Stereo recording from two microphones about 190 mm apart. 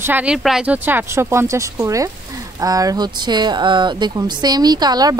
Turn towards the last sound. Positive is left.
turn(degrees=-20)  # may be behind; listen again after turning